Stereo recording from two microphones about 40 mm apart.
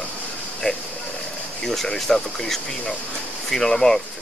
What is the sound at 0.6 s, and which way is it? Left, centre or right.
Speech, left.